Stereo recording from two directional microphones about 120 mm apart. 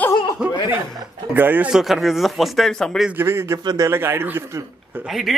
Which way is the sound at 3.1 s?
20° right (ahead or behind).